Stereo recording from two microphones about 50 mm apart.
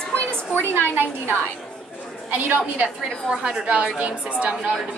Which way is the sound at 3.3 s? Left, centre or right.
Centre.